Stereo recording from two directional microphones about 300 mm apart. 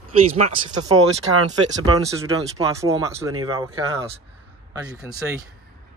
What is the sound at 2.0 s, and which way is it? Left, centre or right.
Speech, centre.